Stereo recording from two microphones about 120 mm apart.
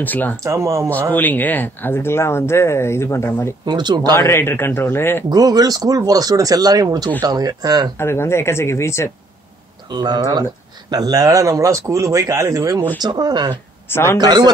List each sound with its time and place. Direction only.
0.0 s speech: 15° left (ahead or behind)
0.4 s speech: 25° right (ahead or behind)
1.1 s speech: 15° left (ahead or behind)
3.6 s speech: 40° right (ahead or behind)
4.2 s speech: 20° left (ahead or behind)
5.3 s speech: 35° right (ahead or behind)
8.0 s speech: 20° left (ahead or behind)
9.8 s speech: 35° right (ahead or behind)
13.8 s speech: 20° left (ahead or behind)
14.1 s speech: 35° right (ahead or behind)